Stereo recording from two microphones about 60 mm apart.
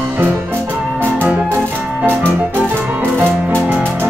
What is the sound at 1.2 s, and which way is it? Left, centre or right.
Music, right.